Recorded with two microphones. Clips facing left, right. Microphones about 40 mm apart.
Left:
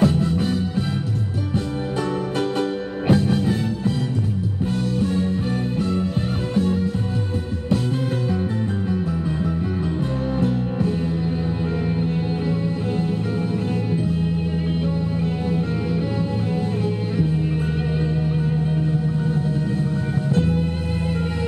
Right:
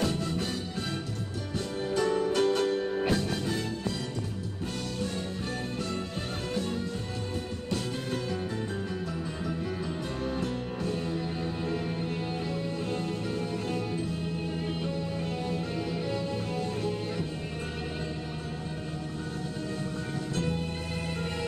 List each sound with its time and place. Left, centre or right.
0.0 s music: centre
2.3 s music: centre
6.5 s music: centre
12.0 s music: centre
20.3 s music: centre